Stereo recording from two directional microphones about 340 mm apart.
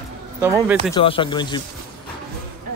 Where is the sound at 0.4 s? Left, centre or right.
Centre.